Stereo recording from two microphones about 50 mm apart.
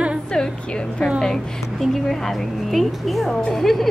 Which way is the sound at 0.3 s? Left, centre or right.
Centre.